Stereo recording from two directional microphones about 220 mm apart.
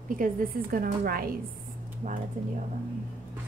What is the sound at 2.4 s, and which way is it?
Speech, 35° right (ahead or behind).